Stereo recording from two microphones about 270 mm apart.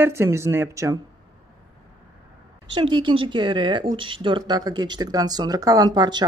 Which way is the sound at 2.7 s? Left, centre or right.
Centre.